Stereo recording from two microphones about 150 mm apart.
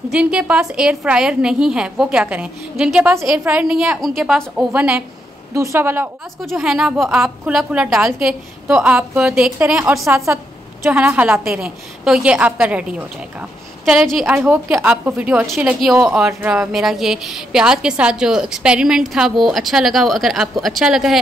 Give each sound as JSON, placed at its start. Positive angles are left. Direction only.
{"t": 0.1, "sound": "a woman's voice", "side_deg": -5}
{"t": 5.5, "sound": "a woman's voice", "side_deg": -20}
{"t": 6.4, "sound": "a woman's voice", "side_deg": 0}
{"t": 10.8, "sound": "a woman's voice", "side_deg": -10}